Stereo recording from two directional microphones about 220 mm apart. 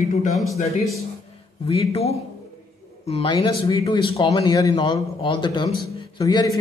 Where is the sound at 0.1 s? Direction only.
35° left (ahead or behind).